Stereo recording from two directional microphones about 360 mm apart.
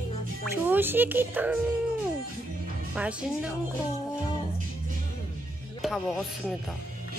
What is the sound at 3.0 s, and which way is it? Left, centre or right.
Speech, centre.